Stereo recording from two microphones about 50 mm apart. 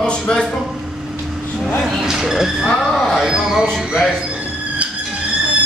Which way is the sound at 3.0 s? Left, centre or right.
Centre.